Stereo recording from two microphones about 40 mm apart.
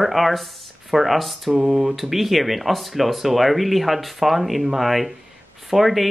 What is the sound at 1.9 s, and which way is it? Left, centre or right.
Speech, centre.